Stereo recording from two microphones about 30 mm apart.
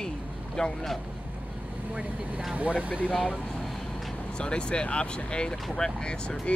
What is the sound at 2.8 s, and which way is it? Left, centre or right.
Speech, right.